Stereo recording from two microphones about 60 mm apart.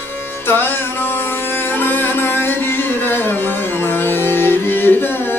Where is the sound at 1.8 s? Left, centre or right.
Left.